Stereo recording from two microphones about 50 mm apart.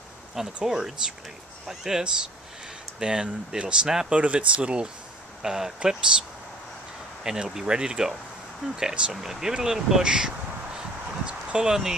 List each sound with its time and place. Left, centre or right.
0.7 s speech: centre
4.1 s speech: right
5.4 s speech: centre
7.2 s speech: centre
11.2 s a sound: centre